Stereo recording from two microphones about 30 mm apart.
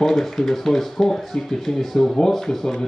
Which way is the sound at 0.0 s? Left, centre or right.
Centre.